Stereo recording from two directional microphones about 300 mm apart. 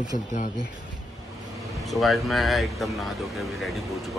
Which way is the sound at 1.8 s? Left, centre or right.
Centre.